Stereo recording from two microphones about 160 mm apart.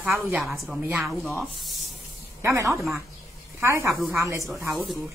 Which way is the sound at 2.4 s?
15° right (ahead or behind).